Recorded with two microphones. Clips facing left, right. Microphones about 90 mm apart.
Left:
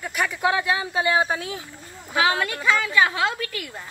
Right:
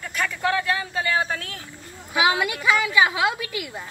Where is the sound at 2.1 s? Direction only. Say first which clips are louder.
Right 1 dB; 15° right (ahead or behind).